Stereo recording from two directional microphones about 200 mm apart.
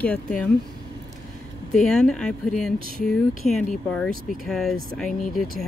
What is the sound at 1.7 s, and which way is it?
Speech, 5° left (ahead or behind).